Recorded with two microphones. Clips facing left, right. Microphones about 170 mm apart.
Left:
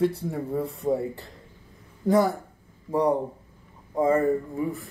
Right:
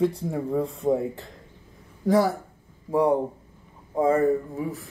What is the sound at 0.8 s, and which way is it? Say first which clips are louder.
Speech: right 2 dB; 25° right (ahead or behind).